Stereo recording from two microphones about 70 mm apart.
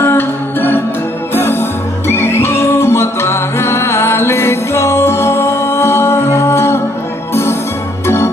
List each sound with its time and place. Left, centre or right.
0.0 s music: left